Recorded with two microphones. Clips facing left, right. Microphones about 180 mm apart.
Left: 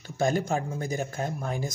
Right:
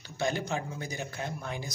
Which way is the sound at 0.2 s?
45° left (ahead or behind).